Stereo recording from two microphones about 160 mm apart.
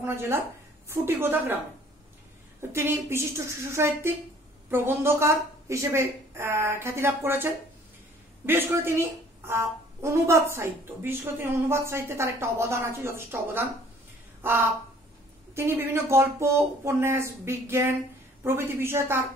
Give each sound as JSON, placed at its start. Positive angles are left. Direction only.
{"t": 0.0, "sound": "a woman's voice", "side_deg": -15}
{"t": 2.7, "sound": "a woman's voice", "side_deg": -15}
{"t": 14.4, "sound": "a sound", "side_deg": -15}
{"t": 15.5, "sound": "a woman's voice", "side_deg": -15}